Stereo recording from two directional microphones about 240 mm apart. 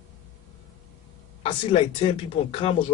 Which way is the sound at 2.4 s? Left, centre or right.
Left.